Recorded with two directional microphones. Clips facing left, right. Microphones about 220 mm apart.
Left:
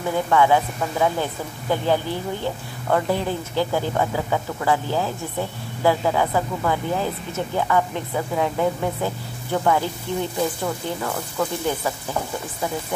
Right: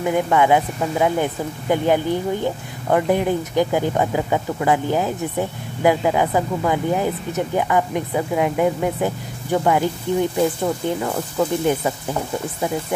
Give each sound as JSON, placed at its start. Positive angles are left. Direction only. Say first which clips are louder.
{"t": 0.1, "sound": "speech", "louder": "right 1 dB", "side_deg": -15}